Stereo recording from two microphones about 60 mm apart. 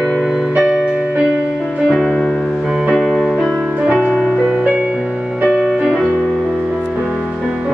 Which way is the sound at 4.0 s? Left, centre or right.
Centre.